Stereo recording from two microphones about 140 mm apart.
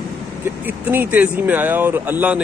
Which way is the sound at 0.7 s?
15° right (ahead or behind).